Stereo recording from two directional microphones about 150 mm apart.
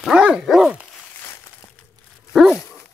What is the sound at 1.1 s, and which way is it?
Crumpling, 15° left (ahead or behind).